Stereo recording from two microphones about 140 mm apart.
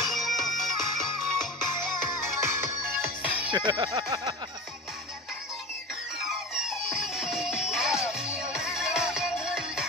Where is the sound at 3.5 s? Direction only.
30° right (ahead or behind).